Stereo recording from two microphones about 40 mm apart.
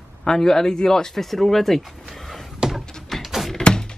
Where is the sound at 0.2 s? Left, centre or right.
Centre.